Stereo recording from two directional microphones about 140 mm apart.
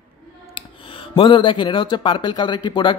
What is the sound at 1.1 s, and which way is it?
Speech, 35° left (ahead or behind).